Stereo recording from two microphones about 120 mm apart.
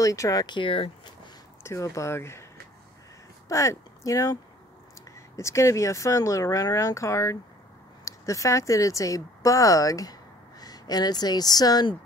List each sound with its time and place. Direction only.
0.0 s speech: 30° left (ahead or behind); by 1.3 s 45° left (ahead or behind)
1.6 s speech: 25° left (ahead or behind)
3.4 s speech: 25° left (ahead or behind)